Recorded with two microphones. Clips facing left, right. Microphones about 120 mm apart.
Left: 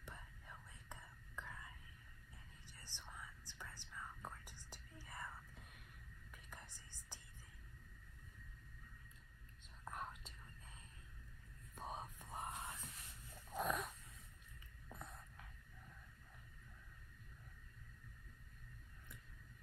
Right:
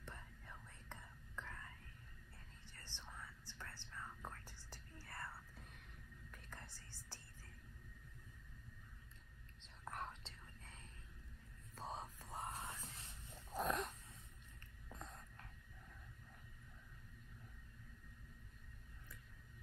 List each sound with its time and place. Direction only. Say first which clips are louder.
0.0 s whispering: right 1 dB; 10° left (ahead or behind)
9.8 s whispering: right 1 dB; 15° left (ahead or behind)
11.7 s whispering: even; 15° left (ahead or behind)
12.6 s music: even; 30° right (ahead or behind)
13.6 s wheeze: right 1 dB; centre (ahead or behind)
14.9 s whispering: even; 10° left (ahead or behind)